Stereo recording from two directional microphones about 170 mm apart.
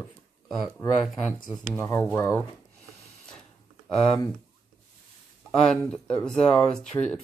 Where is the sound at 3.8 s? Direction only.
5° left (ahead or behind).